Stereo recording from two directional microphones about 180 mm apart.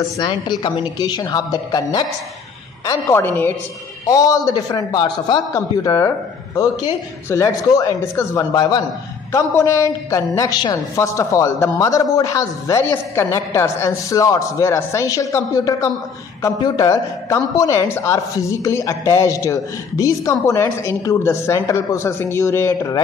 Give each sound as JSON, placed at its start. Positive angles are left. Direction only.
{"t": 0.2, "sound": "a woman's voice", "side_deg": 25}